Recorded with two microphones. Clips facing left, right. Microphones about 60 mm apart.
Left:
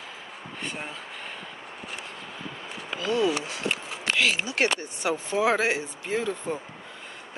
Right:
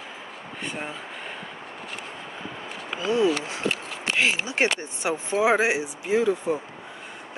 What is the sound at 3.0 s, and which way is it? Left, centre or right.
Speech, right.